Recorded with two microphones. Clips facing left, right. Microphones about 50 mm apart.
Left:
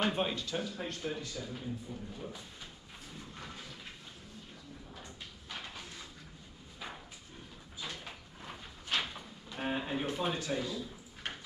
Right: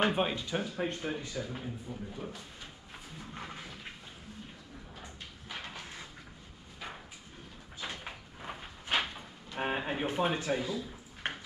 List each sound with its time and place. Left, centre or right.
0.0 s a man's voice: centre
3.3 s a sound: right
5.0 s a sound: centre
7.8 s sliding door: right
9.6 s speech: right
11.2 s clip-clop: right